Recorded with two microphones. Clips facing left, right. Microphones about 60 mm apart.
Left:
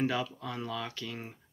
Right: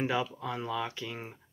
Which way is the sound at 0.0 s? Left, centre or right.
Centre.